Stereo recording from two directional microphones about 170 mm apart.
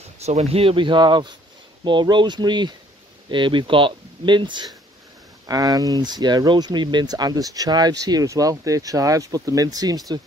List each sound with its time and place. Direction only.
0.2 s speech: 40° right (ahead or behind); by 10.2 s 20° right (ahead or behind)